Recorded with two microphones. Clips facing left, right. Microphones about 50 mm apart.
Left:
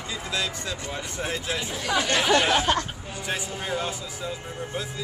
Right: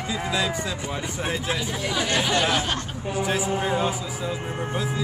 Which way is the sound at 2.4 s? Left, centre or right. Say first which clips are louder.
Left 2 dB; centre.